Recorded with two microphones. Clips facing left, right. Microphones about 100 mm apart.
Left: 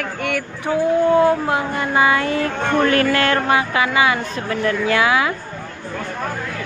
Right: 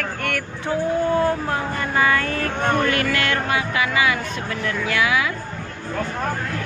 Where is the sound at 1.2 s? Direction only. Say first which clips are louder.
Left 5 dB; 15° left (ahead or behind).